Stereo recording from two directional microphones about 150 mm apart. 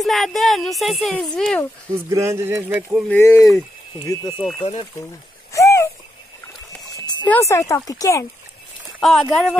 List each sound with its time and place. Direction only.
0.0 s speech: centre (ahead or behind)
2.0 s speech: 20° right (ahead or behind)
3.1 s speech: 15° left (ahead or behind)
5.5 s a sound: 20° left (ahead or behind)
7.2 s speech: 20° left (ahead or behind)
9.0 s speech: centre (ahead or behind)